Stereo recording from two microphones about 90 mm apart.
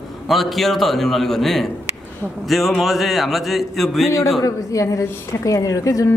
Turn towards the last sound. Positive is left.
turn(degrees=40)  # may be behind; listen again after turning